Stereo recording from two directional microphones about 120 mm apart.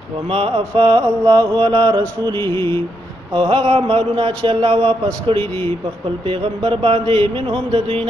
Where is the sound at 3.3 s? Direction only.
50° right (ahead or behind).